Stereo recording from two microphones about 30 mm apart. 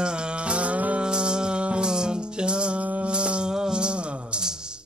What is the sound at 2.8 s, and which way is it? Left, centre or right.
Music, right.